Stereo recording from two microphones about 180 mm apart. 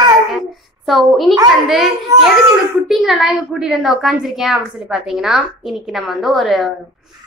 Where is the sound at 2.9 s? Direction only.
Centre (ahead or behind).